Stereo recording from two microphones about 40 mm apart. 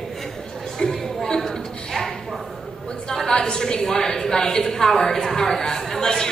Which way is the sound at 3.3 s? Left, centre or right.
Centre.